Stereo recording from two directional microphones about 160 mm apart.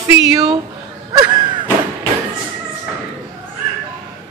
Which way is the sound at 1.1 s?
25° right (ahead or behind).